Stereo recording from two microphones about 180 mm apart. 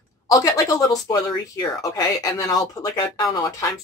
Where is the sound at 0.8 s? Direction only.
20° left (ahead or behind).